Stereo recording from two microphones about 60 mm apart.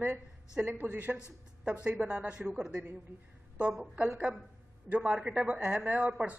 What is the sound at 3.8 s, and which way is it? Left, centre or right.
Speech, right.